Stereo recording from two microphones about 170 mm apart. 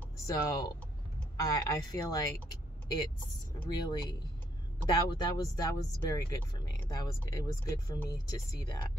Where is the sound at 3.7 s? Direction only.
25° left (ahead or behind).